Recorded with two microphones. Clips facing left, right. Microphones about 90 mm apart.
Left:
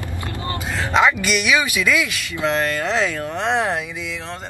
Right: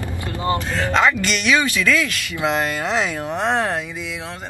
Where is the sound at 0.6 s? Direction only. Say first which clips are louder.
Left 3 dB; 10° left (ahead or behind).